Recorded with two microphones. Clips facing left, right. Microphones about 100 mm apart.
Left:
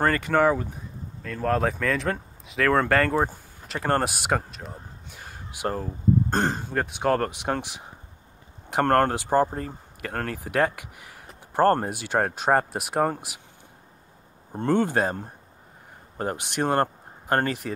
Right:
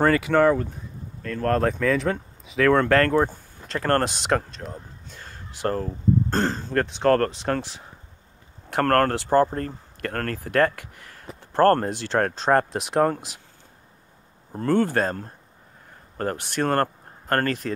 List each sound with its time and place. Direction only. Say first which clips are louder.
0.0 s speech: right 3 dB; centre (ahead or behind)
14.5 s speech: right 1 dB; 20° left (ahead or behind)